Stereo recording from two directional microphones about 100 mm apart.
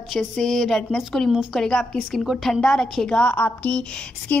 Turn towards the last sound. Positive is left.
turn(degrees=10)  # may be behind; listen again after turning